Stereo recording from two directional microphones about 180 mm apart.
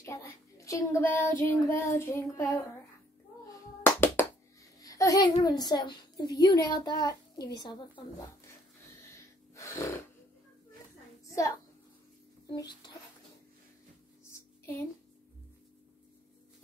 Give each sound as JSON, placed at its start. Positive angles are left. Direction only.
{"t": 0.0, "sound": "speech", "side_deg": 15}
{"t": 3.8, "sound": "hands", "side_deg": 15}
{"t": 4.8, "sound": "a child's voice", "side_deg": 20}
{"t": 9.6, "sound": "a sound", "side_deg": 15}
{"t": 12.4, "sound": "speech", "side_deg": 20}